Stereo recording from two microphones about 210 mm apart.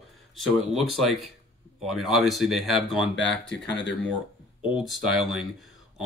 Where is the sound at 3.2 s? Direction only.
55° left (ahead or behind).